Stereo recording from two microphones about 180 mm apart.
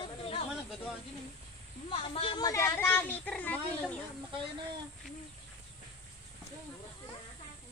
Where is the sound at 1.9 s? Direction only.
30° left (ahead or behind); by 3.9 s 5° left (ahead or behind).